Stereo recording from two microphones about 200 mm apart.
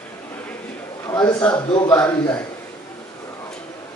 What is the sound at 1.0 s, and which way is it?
A man's voice, 15° left (ahead or behind).